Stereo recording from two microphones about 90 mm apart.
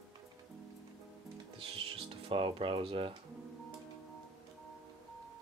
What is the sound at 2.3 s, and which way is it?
Speech, 80° right.